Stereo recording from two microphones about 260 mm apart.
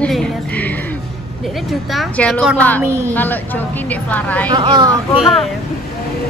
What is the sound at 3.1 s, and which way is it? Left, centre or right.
A woman's voice, centre.